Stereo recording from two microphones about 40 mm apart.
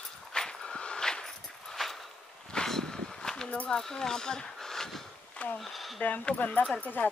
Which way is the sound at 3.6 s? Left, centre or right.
Centre.